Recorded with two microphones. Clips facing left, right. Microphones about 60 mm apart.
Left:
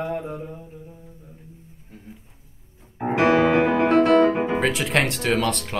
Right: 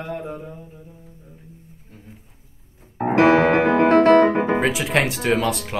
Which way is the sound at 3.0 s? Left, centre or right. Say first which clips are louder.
Right 3 dB; right.